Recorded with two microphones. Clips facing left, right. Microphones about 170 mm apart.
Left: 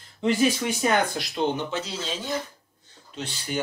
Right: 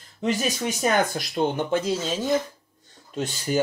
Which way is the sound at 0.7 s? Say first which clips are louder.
Right 1 dB; 45° right (ahead or behind).